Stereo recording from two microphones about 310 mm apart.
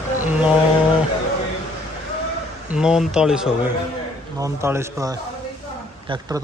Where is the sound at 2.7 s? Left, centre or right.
Centre.